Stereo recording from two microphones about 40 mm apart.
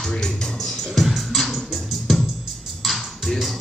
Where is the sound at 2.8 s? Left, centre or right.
Centre.